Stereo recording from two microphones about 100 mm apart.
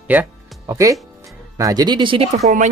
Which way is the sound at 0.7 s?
30° right (ahead or behind).